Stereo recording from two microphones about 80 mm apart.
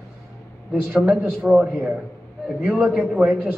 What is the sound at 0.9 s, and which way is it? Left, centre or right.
Speech, centre.